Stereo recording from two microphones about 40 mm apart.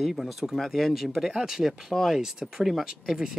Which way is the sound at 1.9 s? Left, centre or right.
Centre.